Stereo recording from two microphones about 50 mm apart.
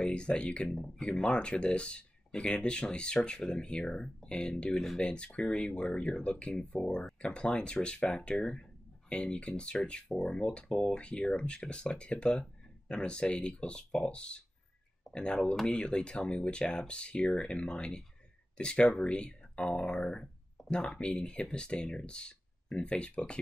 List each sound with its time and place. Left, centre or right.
0.0 s speech: centre